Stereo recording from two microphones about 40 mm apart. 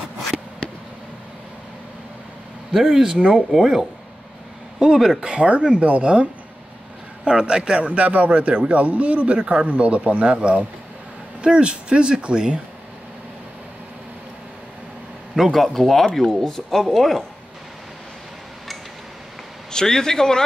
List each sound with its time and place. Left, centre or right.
2.7 s speech: centre
4.9 s speech: centre
5.2 s a man's voice: right
7.2 s a man's voice: right
15.3 s speech: centre
19.7 s speech: centre